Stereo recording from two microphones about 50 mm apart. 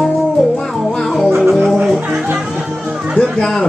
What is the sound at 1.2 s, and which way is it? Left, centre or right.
Music, centre.